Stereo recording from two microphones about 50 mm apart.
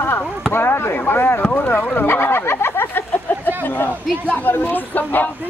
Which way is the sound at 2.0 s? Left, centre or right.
Left.